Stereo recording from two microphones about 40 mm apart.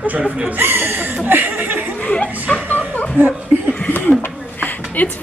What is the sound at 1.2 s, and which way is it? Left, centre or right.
Chuckle, right.